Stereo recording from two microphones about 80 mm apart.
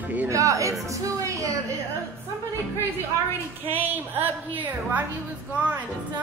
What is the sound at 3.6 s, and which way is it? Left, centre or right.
A woman's voice, right.